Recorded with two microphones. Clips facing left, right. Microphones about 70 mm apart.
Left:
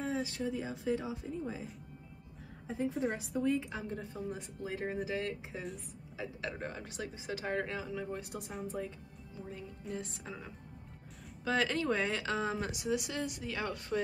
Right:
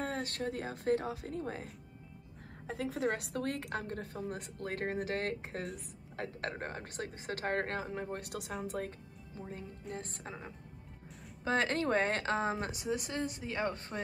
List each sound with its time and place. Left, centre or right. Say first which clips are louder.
0.0 s a woman's voice: left 1 dB; right
6.6 s a woman's voice: even; right
9.9 s a woman's voice: left 2 dB; right
11.4 s a woman's voice: even; right